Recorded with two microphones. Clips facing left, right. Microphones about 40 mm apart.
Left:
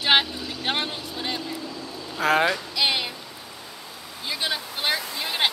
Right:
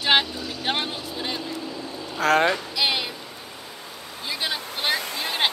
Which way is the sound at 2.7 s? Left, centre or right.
Centre.